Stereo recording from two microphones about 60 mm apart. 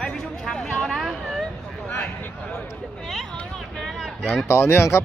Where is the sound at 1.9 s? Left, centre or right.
Left.